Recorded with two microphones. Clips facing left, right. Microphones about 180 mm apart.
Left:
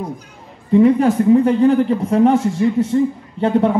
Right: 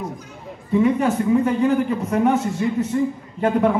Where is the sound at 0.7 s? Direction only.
35° left (ahead or behind).